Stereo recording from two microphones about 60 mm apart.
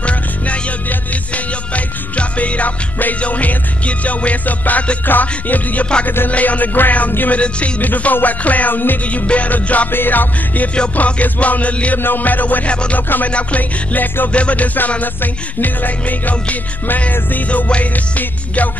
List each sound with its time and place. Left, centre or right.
2.1 s music: left
6.0 s music: left